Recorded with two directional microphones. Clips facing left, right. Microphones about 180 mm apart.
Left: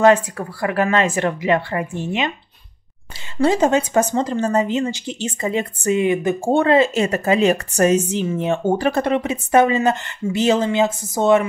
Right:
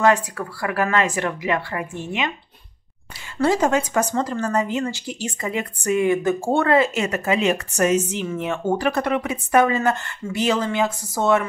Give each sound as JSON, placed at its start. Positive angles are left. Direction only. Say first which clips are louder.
{"t": 0.0, "sound": "speech", "louder": "left 4 dB", "side_deg": 25}
{"t": 3.4, "sound": "speech", "louder": "left 3 dB", "side_deg": 20}